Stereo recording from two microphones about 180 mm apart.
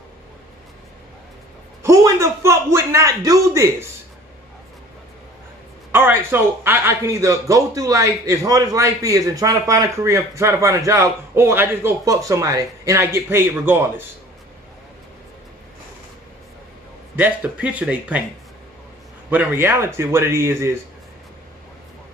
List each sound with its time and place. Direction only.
1.8 s a man's voice: 15° right (ahead or behind)
5.9 s a man's voice: 10° right (ahead or behind)
17.1 s a man's voice: 10° right (ahead or behind)
19.3 s a man's voice: 10° right (ahead or behind)